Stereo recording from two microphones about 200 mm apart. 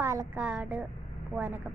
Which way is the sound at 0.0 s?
15° right (ahead or behind).